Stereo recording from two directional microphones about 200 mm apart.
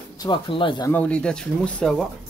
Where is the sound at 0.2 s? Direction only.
25° left (ahead or behind).